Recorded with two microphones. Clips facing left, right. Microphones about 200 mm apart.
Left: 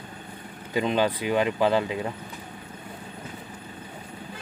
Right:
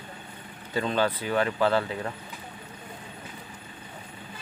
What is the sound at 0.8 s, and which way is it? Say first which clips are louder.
Speech: left 2 dB; 15° left (ahead or behind).